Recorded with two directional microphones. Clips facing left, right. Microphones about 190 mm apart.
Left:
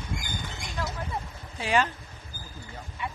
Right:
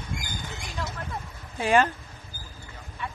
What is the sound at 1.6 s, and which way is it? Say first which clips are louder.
Speech: right 4 dB; 50° right (ahead or behind).